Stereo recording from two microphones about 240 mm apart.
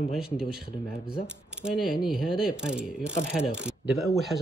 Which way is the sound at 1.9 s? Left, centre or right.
Left.